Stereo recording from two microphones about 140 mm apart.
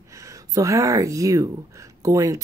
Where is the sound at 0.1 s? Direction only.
20° right (ahead or behind).